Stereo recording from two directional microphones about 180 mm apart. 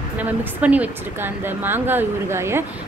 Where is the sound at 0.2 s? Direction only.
10° right (ahead or behind).